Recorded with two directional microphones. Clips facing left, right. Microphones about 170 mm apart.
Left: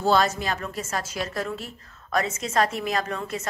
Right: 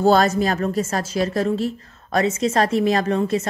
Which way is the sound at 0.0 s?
45° right (ahead or behind).